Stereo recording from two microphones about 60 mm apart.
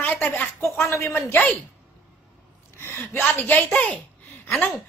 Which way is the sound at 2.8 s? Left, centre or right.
Left.